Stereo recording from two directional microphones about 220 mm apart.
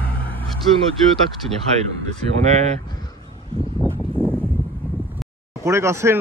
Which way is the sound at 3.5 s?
20° right (ahead or behind).